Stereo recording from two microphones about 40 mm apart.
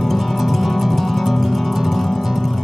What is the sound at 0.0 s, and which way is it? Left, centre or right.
Music, centre.